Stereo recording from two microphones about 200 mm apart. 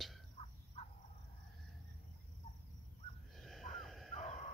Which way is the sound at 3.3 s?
Centre (ahead or behind).